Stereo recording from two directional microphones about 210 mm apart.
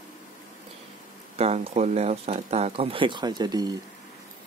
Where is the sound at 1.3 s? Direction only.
30° right (ahead or behind).